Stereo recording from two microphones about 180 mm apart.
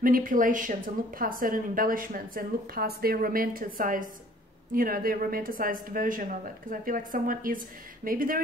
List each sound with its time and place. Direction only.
0.0 s speech: 50° right (ahead or behind)